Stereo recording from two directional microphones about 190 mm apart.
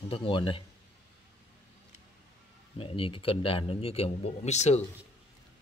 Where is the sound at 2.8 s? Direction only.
30° left (ahead or behind).